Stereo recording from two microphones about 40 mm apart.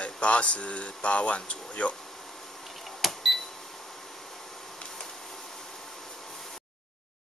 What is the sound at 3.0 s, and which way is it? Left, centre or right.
Cash register, centre.